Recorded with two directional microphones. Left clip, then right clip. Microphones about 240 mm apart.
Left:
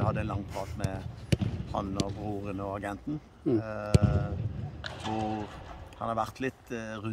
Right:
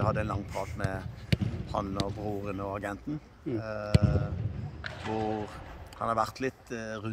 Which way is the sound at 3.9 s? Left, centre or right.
Left.